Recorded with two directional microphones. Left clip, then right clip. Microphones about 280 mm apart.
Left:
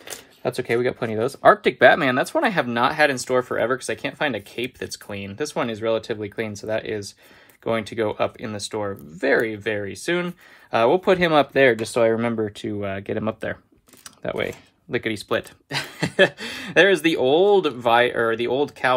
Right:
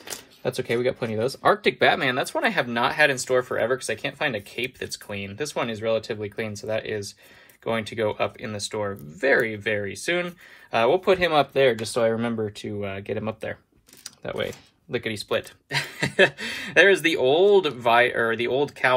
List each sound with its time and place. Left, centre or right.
0.4 s speech: left